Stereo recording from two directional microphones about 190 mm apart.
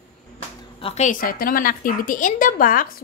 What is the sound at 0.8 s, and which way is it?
A woman's voice, 35° left (ahead or behind).